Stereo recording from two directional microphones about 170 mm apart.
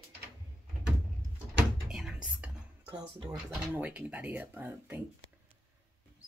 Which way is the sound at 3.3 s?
10° right (ahead or behind).